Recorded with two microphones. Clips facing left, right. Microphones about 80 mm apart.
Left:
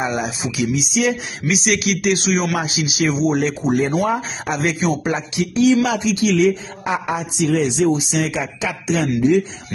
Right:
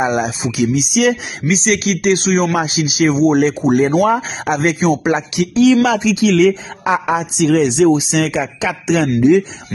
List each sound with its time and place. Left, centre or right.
0.0 s speech: right
0.6 s a sound: right
1.4 s speech: right
4.0 s a man's voice: right
4.6 s speech: right
5.0 s a man's voice: right